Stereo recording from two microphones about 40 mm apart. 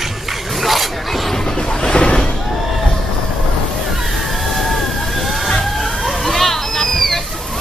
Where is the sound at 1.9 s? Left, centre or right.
Centre.